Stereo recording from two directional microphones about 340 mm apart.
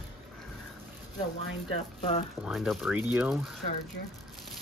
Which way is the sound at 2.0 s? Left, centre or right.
Centre.